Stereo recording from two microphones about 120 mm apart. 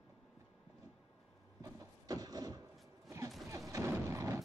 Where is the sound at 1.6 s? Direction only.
30° right (ahead or behind).